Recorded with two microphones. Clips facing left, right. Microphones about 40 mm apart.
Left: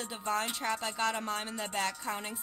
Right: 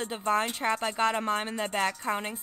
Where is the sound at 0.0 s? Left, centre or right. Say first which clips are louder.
Right 6 dB; right.